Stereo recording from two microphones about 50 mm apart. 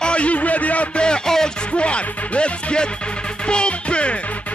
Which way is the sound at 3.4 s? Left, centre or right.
Centre.